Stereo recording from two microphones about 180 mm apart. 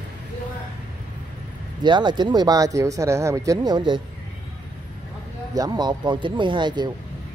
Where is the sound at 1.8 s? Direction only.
25° right (ahead or behind).